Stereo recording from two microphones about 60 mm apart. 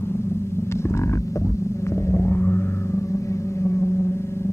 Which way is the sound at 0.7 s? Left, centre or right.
Left.